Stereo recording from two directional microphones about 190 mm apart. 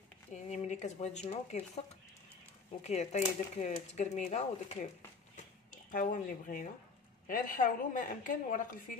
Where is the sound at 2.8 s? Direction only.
35° left (ahead or behind).